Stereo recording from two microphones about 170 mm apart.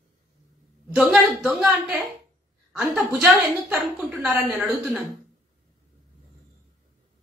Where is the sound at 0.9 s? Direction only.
5° right (ahead or behind).